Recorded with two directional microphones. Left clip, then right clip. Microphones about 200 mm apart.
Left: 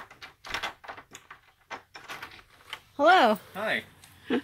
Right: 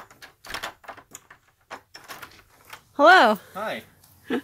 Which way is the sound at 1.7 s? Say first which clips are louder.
Even; 45° right (ahead or behind).